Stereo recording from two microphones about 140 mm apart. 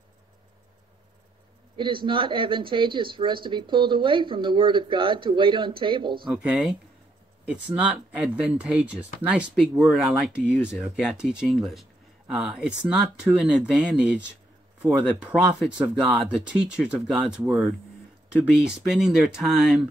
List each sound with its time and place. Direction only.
1.8 s speech: 35° right (ahead or behind)
6.3 s speech: 5° right (ahead or behind)
8.5 s speech: 5° right (ahead or behind)